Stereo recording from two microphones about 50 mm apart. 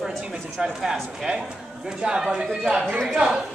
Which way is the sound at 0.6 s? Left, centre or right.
Centre.